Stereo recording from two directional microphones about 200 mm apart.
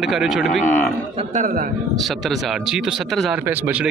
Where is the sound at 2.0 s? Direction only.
Centre (ahead or behind).